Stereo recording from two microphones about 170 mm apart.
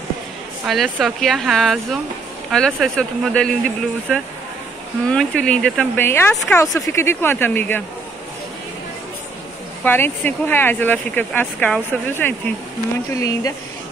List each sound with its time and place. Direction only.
0.7 s speech: centre (ahead or behind)
9.8 s speech: 10° left (ahead or behind)